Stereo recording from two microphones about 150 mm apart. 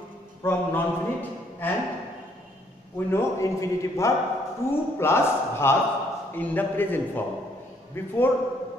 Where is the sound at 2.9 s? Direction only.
15° left (ahead or behind).